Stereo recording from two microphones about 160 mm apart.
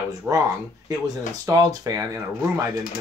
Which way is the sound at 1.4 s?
20° right (ahead or behind).